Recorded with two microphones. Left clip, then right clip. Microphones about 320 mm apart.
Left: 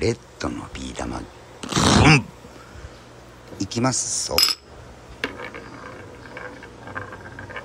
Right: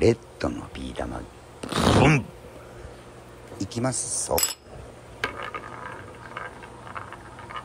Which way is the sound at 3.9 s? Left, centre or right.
Centre.